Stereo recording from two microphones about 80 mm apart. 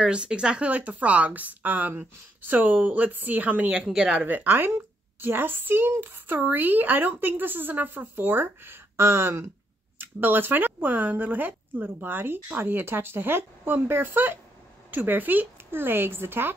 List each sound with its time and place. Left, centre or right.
0.0 s speech: centre; by 16.5 s right